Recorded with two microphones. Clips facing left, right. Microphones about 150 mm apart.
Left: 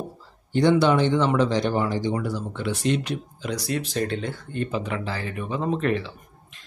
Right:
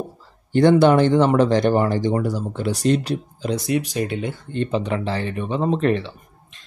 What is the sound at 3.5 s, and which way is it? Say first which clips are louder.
Speech: right 4 dB; 15° right (ahead or behind).